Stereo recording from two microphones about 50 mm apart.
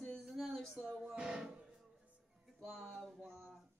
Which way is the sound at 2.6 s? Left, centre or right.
Centre.